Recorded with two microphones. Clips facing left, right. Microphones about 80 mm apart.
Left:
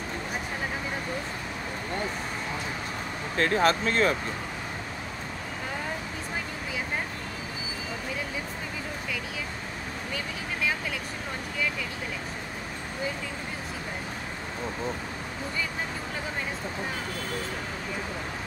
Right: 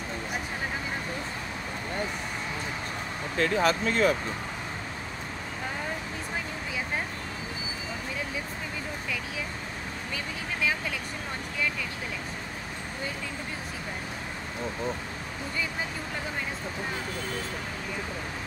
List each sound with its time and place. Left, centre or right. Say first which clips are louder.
3.3 s speech: left 1 dB; left